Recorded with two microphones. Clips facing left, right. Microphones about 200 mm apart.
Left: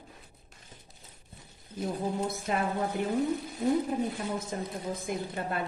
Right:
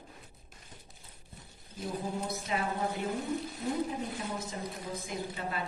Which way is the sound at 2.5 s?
50° left (ahead or behind).